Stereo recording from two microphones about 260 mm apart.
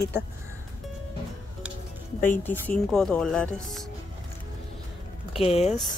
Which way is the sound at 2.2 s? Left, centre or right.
Centre.